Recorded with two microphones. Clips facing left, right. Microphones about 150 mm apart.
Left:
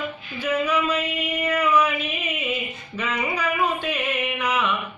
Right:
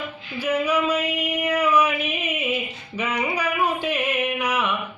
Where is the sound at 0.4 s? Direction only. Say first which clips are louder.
Right 1 dB; 10° right (ahead or behind).